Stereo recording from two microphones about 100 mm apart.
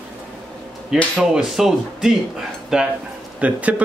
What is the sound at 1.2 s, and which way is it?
A man's voice, 5° right (ahead or behind).